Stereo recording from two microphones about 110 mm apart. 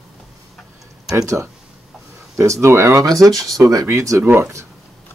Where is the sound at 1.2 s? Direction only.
30° right (ahead or behind).